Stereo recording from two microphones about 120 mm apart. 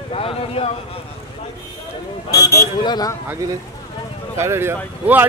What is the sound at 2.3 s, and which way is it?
Speech, 25° left (ahead or behind).